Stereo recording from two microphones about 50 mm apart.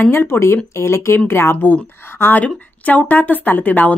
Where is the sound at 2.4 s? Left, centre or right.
Left.